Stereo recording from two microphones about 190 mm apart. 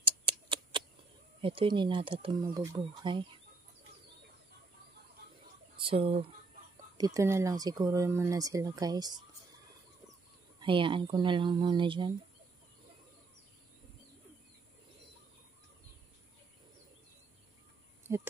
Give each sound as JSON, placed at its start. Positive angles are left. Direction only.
{"t": 0.0, "sound": "tick", "side_deg": -25}
{"t": 1.4, "sound": "speech", "side_deg": -25}
{"t": 2.4, "sound": "speech", "side_deg": -15}
{"t": 5.8, "sound": "speech", "side_deg": -30}
{"t": 7.2, "sound": "speech", "side_deg": -15}
{"t": 10.6, "sound": "speech", "side_deg": -25}